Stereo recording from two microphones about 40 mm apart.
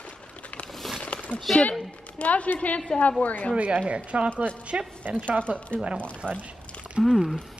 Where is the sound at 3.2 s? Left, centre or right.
Left.